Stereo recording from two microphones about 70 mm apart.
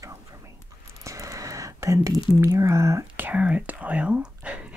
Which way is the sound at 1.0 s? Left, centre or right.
Right.